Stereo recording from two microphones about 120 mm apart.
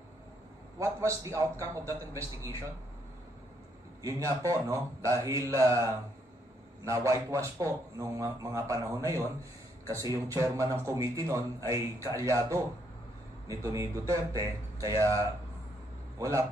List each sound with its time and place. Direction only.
0.7 s a man's voice: 25° right (ahead or behind)
4.0 s a man's voice: 25° right (ahead or behind)
7.1 s a man's voice: 25° right (ahead or behind)